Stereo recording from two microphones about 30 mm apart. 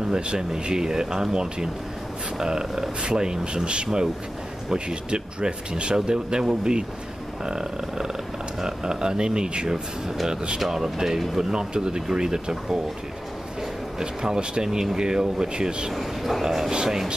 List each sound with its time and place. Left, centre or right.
0.1 s speech: right
10.6 s speech: centre
11.5 s speech: right
13.9 s speech: right
15.9 s a man's voice: centre
16.4 s speech: centre